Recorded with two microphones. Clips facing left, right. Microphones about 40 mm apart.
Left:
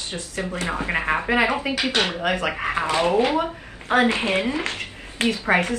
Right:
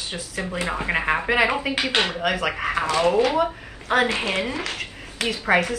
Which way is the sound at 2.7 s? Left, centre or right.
Left.